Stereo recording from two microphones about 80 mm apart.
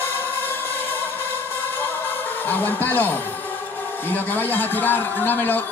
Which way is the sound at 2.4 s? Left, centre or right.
Left.